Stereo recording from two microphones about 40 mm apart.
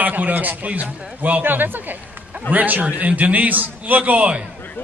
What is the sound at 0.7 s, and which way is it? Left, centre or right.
Speech, right.